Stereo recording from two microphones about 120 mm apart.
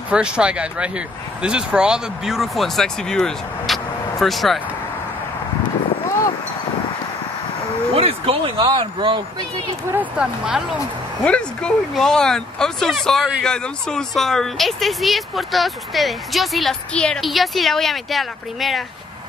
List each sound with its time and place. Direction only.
0.1 s speech: 10° right (ahead or behind)
7.9 s speech: 55° right (ahead or behind)
9.8 s speech: 10° right (ahead or behind)
11.2 s speech: 10° left (ahead or behind)